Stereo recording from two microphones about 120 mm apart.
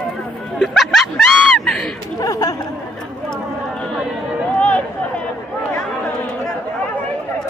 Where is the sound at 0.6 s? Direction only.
5° left (ahead or behind).